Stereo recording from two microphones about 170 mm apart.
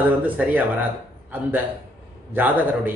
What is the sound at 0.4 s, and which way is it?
Speech, 10° right (ahead or behind).